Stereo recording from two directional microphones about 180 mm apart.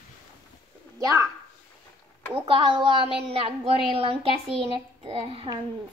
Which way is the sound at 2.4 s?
25° right (ahead or behind).